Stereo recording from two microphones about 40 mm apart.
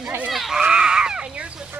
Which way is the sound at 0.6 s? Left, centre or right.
Centre.